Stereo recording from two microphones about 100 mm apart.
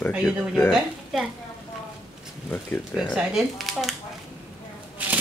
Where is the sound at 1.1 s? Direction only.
Centre (ahead or behind).